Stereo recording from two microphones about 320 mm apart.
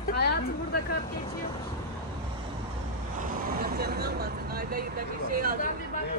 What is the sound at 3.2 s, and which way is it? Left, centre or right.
Speech, right.